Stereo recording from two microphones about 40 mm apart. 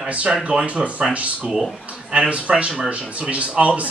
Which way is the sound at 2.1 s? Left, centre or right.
Right.